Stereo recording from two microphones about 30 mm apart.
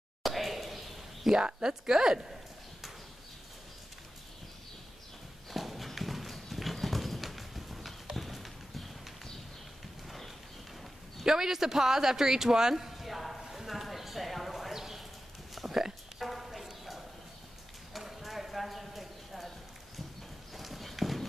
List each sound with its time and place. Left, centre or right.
0.2 s a sound: centre
1.3 s speech: right
5.5 s clip-clop: centre
10.0 s horse: centre
11.2 s speech: centre
12.7 s clip-clop: centre
14.7 s clip-clop: centre
15.6 s a sound: centre
17.9 s clip-clop: centre
20.5 s clip-clop: centre